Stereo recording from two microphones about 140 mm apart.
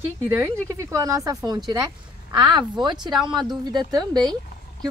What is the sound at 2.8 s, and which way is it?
Speech, 30° right (ahead or behind).